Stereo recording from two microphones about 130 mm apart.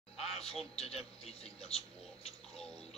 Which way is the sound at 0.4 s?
5° left (ahead or behind).